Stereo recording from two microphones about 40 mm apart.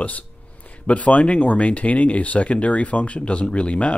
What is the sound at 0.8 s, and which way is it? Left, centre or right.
Speech, left.